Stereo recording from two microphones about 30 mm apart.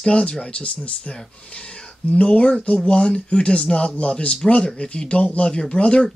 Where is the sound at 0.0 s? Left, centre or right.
Left.